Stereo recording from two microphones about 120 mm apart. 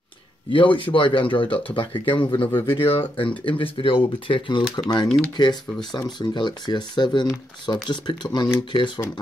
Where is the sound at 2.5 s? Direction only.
20° left (ahead or behind).